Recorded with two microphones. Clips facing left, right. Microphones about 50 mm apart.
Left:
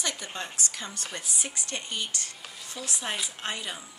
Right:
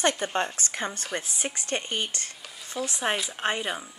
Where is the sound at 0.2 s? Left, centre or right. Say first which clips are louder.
Right 8 dB; right.